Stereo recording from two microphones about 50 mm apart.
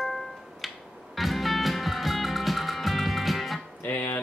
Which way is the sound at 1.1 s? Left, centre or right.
Centre.